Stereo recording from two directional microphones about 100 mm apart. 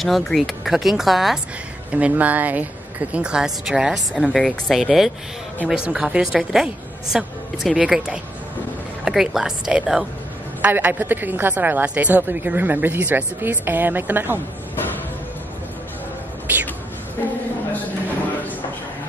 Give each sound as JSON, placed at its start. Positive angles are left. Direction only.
{"t": 0.0, "sound": "speech", "side_deg": 0}
{"t": 1.9, "sound": "a woman's voice", "side_deg": -10}
{"t": 10.6, "sound": "a woman's voice", "side_deg": -20}
{"t": 17.2, "sound": "a sound", "side_deg": 30}